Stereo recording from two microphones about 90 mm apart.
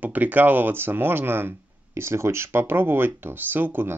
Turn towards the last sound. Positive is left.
turn(degrees=-20)  # may be behind; listen again after turning